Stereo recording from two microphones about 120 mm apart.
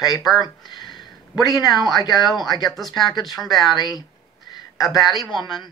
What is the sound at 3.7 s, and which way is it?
Speech, 30° left (ahead or behind).